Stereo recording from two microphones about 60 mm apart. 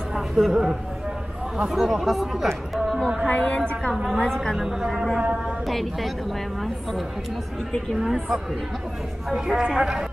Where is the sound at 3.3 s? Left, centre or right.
Left.